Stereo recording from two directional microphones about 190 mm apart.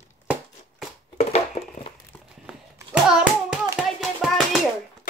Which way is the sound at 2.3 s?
5° right (ahead or behind).